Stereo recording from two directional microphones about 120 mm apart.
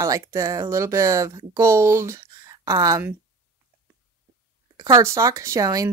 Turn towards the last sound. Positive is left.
turn(degrees=-30)  # may be behind; listen again after turning